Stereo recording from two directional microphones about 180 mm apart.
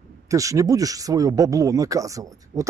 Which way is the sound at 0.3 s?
20° right (ahead or behind).